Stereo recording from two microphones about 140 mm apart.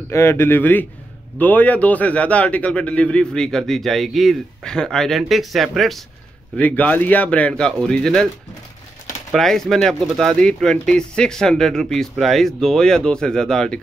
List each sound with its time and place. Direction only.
0.1 s a man's voice: 20° left (ahead or behind); by 6.0 s centre (ahead or behind)
6.5 s speech: 10° left (ahead or behind)
9.3 s a man's voice: centre (ahead or behind)